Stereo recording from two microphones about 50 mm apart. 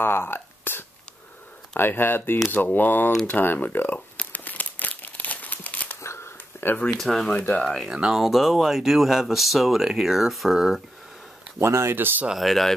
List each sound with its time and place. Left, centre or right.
0.0 s a sound: left
1.8 s speech: left
4.2 s crumpling: left
6.0 s a sound: left
7.0 s speech: centre
7.2 s speech: left
7.6 s speech: centre
7.9 s speech: centre
11.6 s speech: right
12.4 s speech: centre